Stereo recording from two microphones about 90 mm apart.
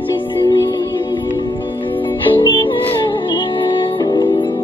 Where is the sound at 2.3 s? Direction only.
60° left (ahead or behind).